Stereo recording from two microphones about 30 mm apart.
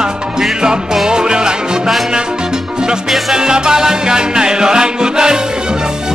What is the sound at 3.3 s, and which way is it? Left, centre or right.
Music, right.